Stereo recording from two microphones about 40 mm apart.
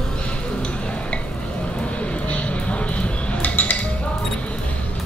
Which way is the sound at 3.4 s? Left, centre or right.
Left.